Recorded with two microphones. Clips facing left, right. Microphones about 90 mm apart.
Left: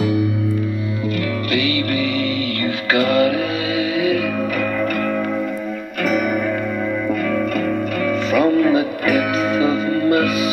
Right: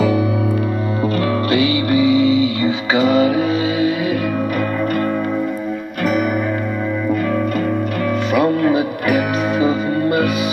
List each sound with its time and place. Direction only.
1.5 s music: 25° right (ahead or behind)
3.8 s music: 90° left
8.3 s music: 10° right (ahead or behind)